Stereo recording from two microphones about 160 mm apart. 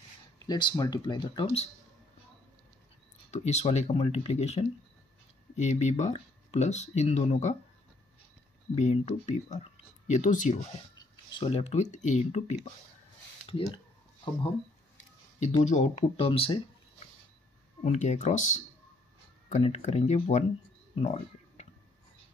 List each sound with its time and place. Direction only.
0.5 s speech: 25° left (ahead or behind)
3.3 s speech: 45° left (ahead or behind)
8.7 s speech: 45° left (ahead or behind)
11.0 s speech: 30° left (ahead or behind)
15.6 s speech: 45° left (ahead or behind)
17.8 s speech: 45° left (ahead or behind)
20.9 s a sound: 40° left (ahead or behind)